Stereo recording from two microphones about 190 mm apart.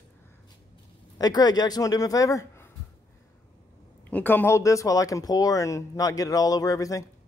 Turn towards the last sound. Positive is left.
turn(degrees=20)  # may be behind; listen again after turning